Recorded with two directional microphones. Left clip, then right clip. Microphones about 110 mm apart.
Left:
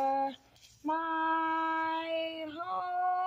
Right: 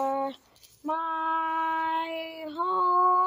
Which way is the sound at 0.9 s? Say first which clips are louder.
Right 3 dB; 50° right (ahead or behind).